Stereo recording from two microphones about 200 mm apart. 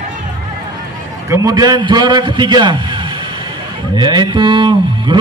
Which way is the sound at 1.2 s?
15° right (ahead or behind).